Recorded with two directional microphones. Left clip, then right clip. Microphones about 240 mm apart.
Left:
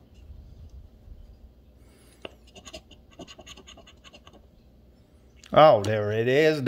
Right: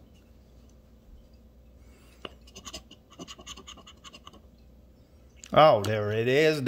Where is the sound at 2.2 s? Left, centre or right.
Centre.